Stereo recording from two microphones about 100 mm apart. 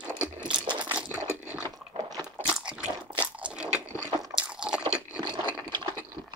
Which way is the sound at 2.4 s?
10° right (ahead or behind).